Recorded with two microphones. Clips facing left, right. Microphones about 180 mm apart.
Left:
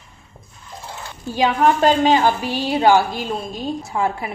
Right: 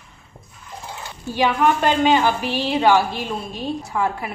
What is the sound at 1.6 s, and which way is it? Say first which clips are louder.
A woman's voice: left 4 dB; 40° left (ahead or behind).